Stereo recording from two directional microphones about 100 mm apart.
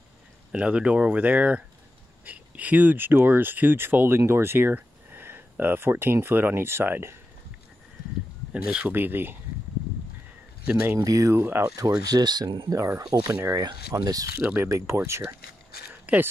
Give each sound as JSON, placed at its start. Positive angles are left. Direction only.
{"t": 0.5, "sound": "speech", "side_deg": -10}
{"t": 8.6, "sound": "speech", "side_deg": -15}
{"t": 10.6, "sound": "speech", "side_deg": -15}
{"t": 11.0, "sound": "speech", "side_deg": -35}
{"t": 12.1, "sound": "speech", "side_deg": -40}
{"t": 12.6, "sound": "speech", "side_deg": -30}
{"t": 13.0, "sound": "speech", "side_deg": -45}
{"t": 14.4, "sound": "speech", "side_deg": -20}
{"t": 15.9, "sound": "a sound", "side_deg": -15}